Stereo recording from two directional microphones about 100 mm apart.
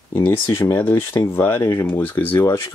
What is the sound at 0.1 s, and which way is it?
Speech, 20° left (ahead or behind).